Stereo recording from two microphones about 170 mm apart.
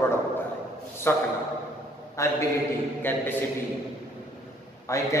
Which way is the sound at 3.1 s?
10° left (ahead or behind).